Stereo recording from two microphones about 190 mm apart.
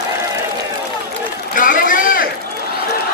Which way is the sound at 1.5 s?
45° left (ahead or behind).